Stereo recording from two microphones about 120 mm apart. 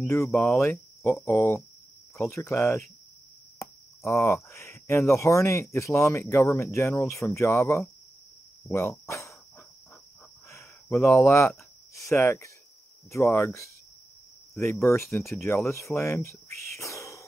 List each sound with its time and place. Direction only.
0.3 s speech: centre (ahead or behind)
0.6 s speech: 20° left (ahead or behind)
10.5 s a sound: 20° left (ahead or behind)
13.4 s speech: 25° left (ahead or behind)